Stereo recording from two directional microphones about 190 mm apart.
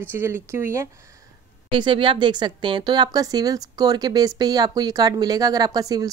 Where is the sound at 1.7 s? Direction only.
25° right (ahead or behind).